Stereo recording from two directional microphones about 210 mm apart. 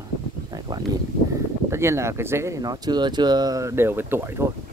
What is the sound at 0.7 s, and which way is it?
Speech, 20° right (ahead or behind).